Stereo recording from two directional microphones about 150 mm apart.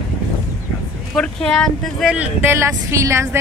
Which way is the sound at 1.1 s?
5° left (ahead or behind).